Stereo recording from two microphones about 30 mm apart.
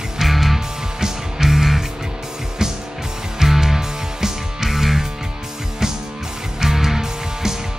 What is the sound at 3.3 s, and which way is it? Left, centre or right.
Music, centre.